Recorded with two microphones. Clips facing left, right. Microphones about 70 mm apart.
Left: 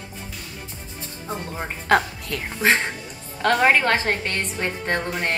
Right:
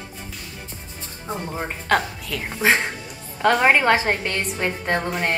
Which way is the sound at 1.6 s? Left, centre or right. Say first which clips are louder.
Left 2 dB; centre.